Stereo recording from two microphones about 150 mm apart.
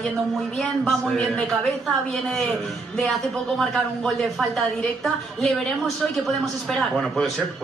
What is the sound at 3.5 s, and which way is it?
A man's voice, centre (ahead or behind).